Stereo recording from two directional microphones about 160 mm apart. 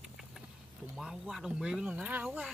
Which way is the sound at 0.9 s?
Centre (ahead or behind).